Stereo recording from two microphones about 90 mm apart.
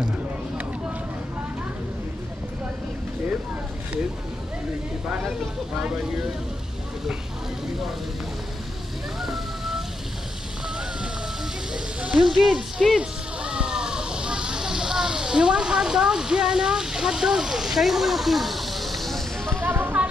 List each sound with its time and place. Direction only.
9.2 s rain: 5° right (ahead or behind)
11.7 s sizzle: 10° right (ahead or behind)
12.3 s a sound: centre (ahead or behind)
19.6 s music: 25° right (ahead or behind)